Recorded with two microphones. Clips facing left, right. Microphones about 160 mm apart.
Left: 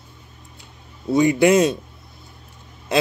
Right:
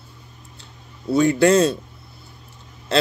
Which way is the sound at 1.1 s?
15° left (ahead or behind).